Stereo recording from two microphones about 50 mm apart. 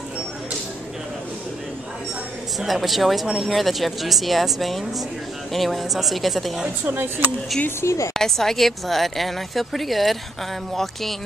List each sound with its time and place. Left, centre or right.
2.6 s speech: centre
7.8 s speech: left
8.1 s speech: centre